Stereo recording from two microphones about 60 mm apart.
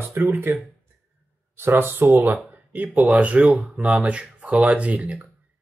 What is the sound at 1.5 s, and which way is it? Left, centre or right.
Speech, right.